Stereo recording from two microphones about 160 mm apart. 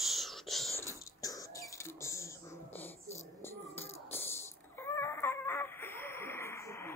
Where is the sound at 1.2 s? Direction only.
20° left (ahead or behind).